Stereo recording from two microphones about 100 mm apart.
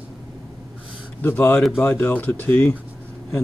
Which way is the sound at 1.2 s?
20° left (ahead or behind).